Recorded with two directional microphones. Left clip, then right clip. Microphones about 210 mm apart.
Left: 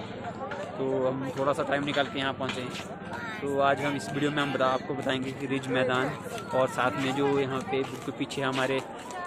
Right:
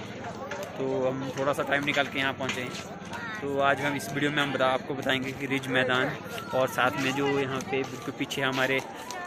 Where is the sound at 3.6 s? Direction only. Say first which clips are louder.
Even; centre (ahead or behind).